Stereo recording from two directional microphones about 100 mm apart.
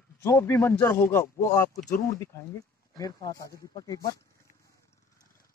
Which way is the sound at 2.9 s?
40° left (ahead or behind).